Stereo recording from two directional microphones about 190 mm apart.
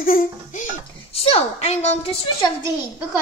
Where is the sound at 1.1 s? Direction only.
30° left (ahead or behind).